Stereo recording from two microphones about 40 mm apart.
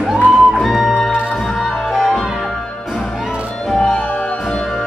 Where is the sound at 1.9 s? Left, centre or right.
Centre.